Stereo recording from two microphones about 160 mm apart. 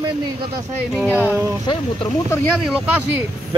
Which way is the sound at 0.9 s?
10° right (ahead or behind).